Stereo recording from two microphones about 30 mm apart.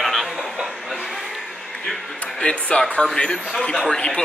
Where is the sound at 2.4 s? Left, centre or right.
Left.